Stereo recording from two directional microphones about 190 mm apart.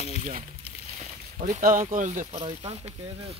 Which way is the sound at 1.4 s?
45° right (ahead or behind).